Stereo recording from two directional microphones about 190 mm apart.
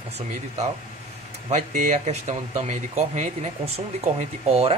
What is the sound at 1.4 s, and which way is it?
Speech, 40° right (ahead or behind).